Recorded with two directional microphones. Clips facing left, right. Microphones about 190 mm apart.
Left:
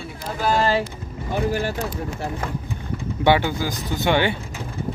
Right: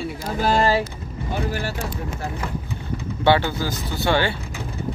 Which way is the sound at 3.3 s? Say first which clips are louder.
Even; 15° left (ahead or behind).